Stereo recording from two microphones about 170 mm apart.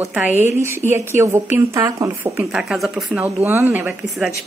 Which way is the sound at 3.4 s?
10° right (ahead or behind).